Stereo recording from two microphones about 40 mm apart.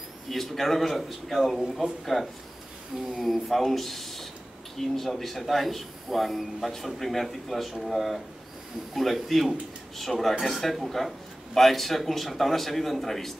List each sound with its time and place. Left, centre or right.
0.3 s speech: centre